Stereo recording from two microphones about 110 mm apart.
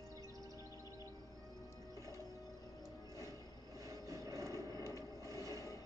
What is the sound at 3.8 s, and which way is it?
Vehicle, 30° right (ahead or behind).